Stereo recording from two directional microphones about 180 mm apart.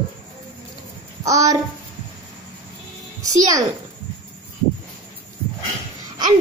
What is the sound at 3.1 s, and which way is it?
Speech, 20° right (ahead or behind).